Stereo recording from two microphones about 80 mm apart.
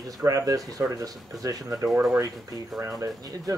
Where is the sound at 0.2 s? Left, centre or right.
Right.